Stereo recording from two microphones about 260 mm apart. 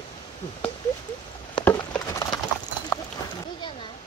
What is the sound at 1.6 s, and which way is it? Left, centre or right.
Clip-clop, centre.